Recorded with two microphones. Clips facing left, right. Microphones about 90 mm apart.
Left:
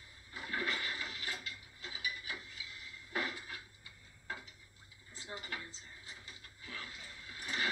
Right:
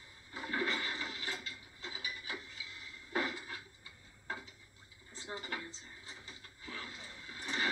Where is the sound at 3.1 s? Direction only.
25° right (ahead or behind).